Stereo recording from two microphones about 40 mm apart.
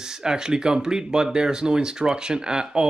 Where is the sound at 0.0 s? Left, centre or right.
Centre.